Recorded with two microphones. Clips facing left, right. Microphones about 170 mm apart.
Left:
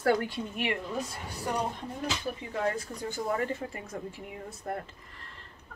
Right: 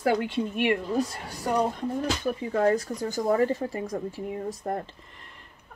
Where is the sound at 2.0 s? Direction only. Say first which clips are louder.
Right 6 dB; 45° right (ahead or behind).